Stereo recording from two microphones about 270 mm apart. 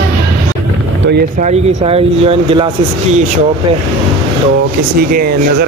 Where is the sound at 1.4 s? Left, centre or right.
Right.